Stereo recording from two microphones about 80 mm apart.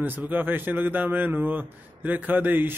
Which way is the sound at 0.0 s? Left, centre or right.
Right.